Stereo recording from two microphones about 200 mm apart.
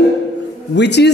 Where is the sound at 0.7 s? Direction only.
60° left (ahead or behind).